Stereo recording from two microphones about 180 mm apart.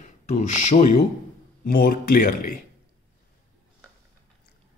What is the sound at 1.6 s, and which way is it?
Speech, 50° left (ahead or behind).